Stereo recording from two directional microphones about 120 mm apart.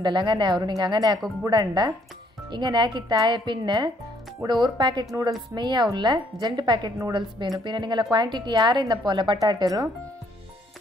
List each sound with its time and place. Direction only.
0.0 s a woman's voice: 40° right (ahead or behind)